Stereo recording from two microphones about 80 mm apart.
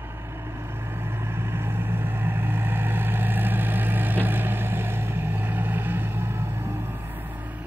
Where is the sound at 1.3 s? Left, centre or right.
Right.